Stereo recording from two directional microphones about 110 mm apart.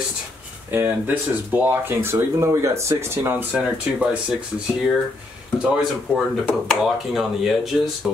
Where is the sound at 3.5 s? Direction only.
10° right (ahead or behind).